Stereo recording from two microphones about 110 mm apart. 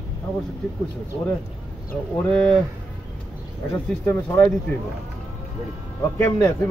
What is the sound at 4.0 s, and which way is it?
Speech, 20° left (ahead or behind).